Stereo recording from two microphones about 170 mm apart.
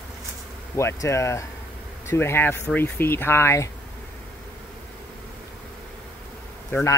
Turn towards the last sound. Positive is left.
turn(degrees=15)  # may be behind; listen again after turning